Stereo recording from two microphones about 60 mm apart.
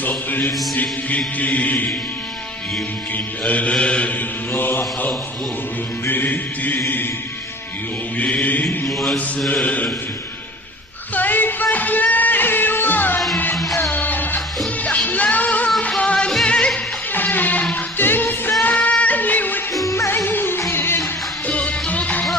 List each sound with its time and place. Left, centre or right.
0.0 s music: left
3.4 s music: left
4.5 s mantra: left
8.2 s music: left
8.9 s mantra: centre
9.5 s music: left
11.1 s music: left; by 16.8 s centre
17.1 s music: left
21.5 s music: left